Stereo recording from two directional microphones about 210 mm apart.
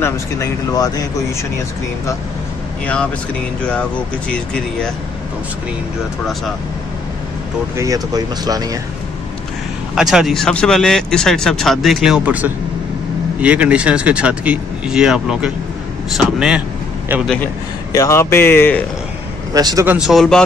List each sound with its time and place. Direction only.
0.0 s speech: 15° left (ahead or behind)
3.6 s speech: 5° left (ahead or behind)
7.7 s speech: 15° right (ahead or behind)
9.9 s speech: centre (ahead or behind)
17.9 s speech: 15° left (ahead or behind)
19.5 s speech: 15° right (ahead or behind)
20.0 s speech: centre (ahead or behind)